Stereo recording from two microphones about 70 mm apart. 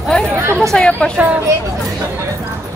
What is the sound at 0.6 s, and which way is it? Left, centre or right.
Speech, centre.